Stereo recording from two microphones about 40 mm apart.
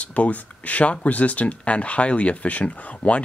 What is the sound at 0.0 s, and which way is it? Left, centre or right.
Speech, left.